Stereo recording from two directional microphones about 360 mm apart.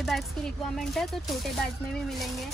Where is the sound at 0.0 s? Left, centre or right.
Centre.